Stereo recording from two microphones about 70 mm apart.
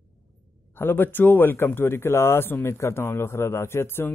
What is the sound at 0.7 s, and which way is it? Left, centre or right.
Speech, left.